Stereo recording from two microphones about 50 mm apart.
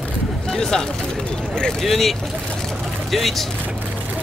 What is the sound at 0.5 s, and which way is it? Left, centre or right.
Speech, centre.